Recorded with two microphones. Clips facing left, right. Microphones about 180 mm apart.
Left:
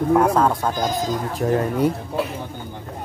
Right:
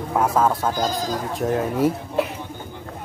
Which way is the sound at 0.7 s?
20° left (ahead or behind).